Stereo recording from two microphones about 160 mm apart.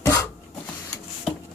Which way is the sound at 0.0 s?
20° left (ahead or behind).